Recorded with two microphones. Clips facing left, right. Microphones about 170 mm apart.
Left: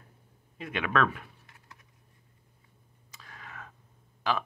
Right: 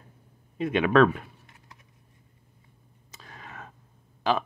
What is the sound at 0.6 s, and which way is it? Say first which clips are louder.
Speech: right 9 dB; 25° right (ahead or behind).